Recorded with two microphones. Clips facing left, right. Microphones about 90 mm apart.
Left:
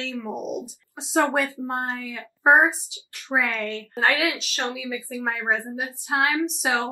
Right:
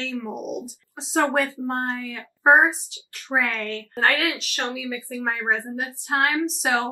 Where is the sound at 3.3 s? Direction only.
5° left (ahead or behind).